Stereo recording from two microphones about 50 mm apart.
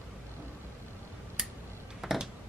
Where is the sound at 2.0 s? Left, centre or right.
Centre.